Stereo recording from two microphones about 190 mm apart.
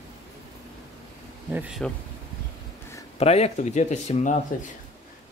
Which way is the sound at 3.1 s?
35° left (ahead or behind).